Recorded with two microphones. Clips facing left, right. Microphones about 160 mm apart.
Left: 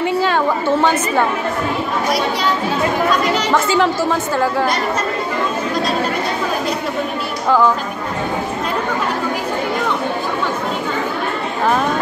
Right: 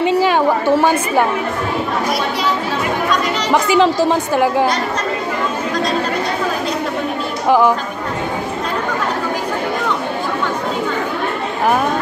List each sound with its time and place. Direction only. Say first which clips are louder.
0.0 s chatter: right 3 dB; 15° right (ahead or behind)
3.5 s speech: right 5 dB; 15° right (ahead or behind)
7.4 s speech: right 2 dB; 15° right (ahead or behind)